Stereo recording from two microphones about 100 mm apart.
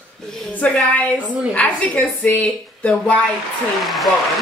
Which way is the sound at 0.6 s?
15° left (ahead or behind).